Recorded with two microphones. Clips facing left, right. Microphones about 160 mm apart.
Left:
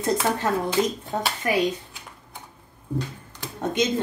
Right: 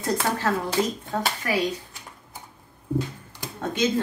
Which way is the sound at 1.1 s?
20° left (ahead or behind).